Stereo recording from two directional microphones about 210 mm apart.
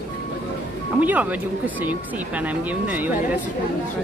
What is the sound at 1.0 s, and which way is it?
Speech, 5° right (ahead or behind).